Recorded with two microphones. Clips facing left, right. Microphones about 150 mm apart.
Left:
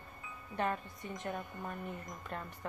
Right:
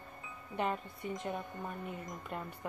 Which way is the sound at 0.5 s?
15° right (ahead or behind).